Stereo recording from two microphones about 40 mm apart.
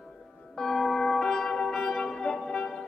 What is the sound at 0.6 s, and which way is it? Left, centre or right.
Music, centre.